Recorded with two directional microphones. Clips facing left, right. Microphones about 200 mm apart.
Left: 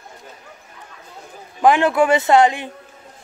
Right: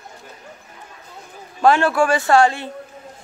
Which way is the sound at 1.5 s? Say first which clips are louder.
Left 1 dB; 15° left (ahead or behind).